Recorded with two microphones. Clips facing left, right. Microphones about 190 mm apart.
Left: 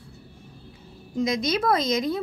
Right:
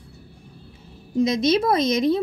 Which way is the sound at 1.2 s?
25° right (ahead or behind).